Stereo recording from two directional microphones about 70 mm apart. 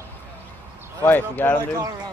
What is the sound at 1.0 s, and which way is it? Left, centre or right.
Speech, left.